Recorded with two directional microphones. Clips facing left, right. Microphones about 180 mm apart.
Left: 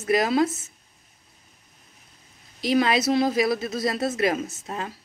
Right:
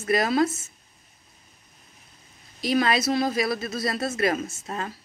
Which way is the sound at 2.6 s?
15° left (ahead or behind).